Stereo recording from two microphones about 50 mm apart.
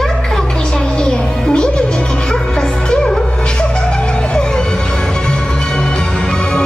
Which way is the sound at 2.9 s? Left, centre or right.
Centre.